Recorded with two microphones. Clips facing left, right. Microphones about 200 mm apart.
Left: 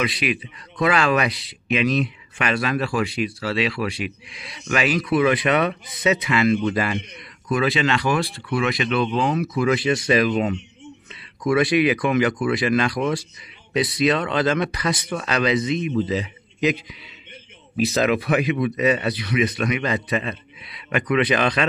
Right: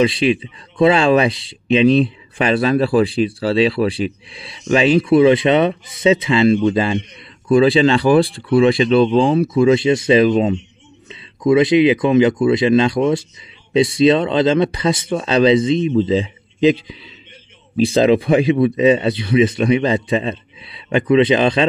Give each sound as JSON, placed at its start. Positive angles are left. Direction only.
{"t": 0.0, "sound": "speech", "side_deg": -30}